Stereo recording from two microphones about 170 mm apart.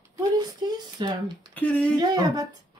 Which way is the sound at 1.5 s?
5° left (ahead or behind).